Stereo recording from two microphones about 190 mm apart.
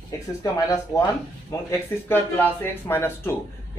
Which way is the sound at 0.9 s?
10° right (ahead or behind).